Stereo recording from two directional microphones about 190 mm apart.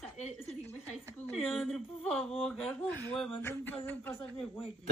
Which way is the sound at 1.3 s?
Centre (ahead or behind).